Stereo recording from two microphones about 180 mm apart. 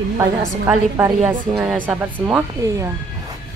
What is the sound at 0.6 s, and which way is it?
Speech, 10° right (ahead or behind).